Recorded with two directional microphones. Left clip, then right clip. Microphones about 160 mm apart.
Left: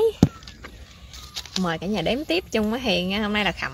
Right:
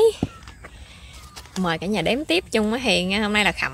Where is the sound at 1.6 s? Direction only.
10° right (ahead or behind).